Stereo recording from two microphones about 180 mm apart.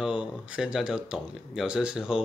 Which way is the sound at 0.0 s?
5° right (ahead or behind).